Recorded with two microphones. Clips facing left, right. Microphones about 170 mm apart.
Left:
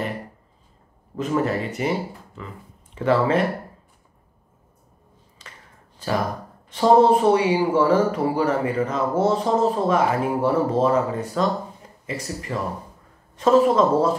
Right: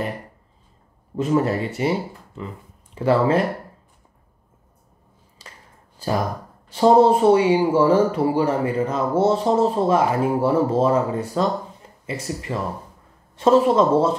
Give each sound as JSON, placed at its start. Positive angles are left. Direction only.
{"t": 1.1, "sound": "speech", "side_deg": -35}
{"t": 5.4, "sound": "a sound", "side_deg": -30}
{"t": 6.7, "sound": "speech", "side_deg": -30}